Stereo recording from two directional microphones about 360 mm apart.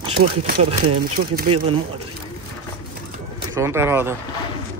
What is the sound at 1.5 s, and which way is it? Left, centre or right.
Speech, right.